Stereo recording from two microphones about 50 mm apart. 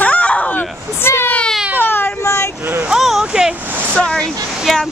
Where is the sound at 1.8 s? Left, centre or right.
Left.